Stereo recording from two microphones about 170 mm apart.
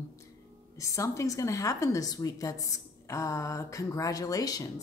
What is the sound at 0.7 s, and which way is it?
A woman's voice, 20° left (ahead or behind).